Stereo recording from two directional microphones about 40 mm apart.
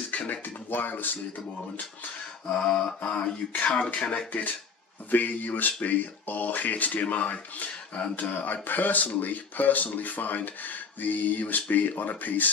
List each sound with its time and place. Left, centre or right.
0.1 s a sound: left
0.7 s speech: left
2.5 s mantra: left
3.5 s speech: left